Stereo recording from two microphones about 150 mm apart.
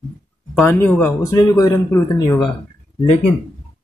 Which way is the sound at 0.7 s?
15° left (ahead or behind).